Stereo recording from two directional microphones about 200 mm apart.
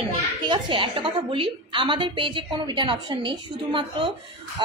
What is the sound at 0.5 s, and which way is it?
Speech, 25° right (ahead or behind).